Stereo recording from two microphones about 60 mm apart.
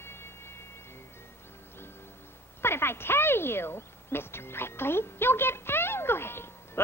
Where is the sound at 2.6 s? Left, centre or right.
Left.